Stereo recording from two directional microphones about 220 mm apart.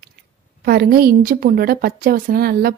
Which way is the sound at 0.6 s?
45° right (ahead or behind).